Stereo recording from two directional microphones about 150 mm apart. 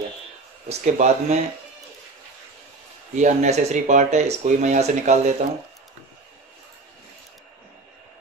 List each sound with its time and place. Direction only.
0.7 s speech: 50° right (ahead or behind)
3.2 s speech: 50° right (ahead or behind)